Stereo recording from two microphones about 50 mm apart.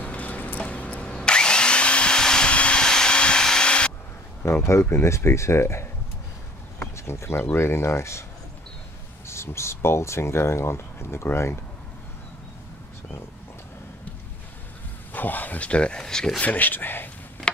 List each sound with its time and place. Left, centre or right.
0.0 s a sound: left
1.0 s a sound: centre
4.6 s speech: left
7.1 s speech: left
9.3 s speech: left
15.1 s speech: left; by 16.3 s centre
16.3 s speech: left